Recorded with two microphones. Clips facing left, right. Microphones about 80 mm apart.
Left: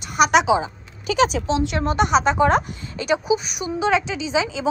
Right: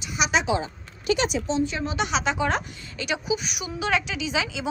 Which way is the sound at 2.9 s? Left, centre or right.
Left.